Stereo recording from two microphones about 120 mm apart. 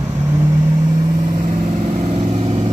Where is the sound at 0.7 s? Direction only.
90° right; by 2.5 s 65° right (ahead or behind).